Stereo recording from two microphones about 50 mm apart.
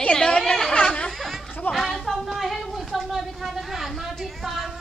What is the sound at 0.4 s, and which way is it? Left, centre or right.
Chatter, centre.